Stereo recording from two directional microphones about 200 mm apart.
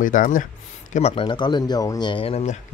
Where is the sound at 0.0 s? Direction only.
40° left (ahead or behind).